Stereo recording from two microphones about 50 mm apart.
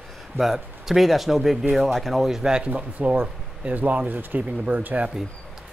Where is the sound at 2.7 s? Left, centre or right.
Right.